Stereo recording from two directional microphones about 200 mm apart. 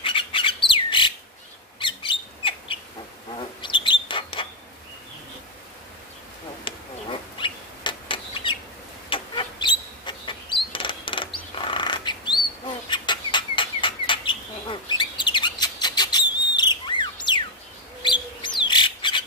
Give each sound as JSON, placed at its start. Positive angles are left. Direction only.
{"t": 0.0, "sound": "squawk", "side_deg": 25}
{"t": 1.8, "sound": "bird", "side_deg": 25}
{"t": 6.6, "sound": "bird", "side_deg": 25}
{"t": 9.1, "sound": "a sound", "side_deg": 25}
{"t": 18.0, "sound": "bird", "side_deg": 25}